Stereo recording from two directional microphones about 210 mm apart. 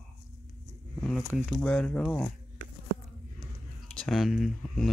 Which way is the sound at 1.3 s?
Centre (ahead or behind).